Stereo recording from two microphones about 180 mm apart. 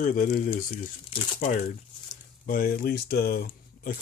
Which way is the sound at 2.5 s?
50° left (ahead or behind).